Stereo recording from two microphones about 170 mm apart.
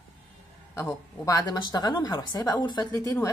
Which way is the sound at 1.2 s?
25° left (ahead or behind).